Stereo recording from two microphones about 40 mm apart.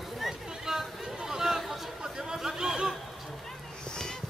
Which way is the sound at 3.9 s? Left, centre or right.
Centre.